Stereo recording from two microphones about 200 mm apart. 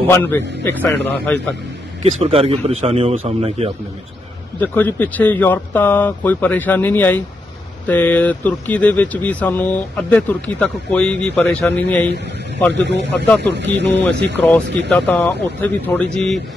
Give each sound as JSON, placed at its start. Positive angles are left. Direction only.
{"t": 0.1, "sound": "speech", "side_deg": 10}
{"t": 2.1, "sound": "a man's voice", "side_deg": -30}
{"t": 4.6, "sound": "speech", "side_deg": 10}
{"t": 12.8, "sound": "speech", "side_deg": -60}
{"t": 14.9, "sound": "speech", "side_deg": 5}